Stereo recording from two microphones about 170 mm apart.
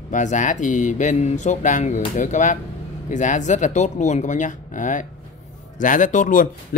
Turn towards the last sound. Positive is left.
turn(degrees=50)  # may be behind; listen again after turning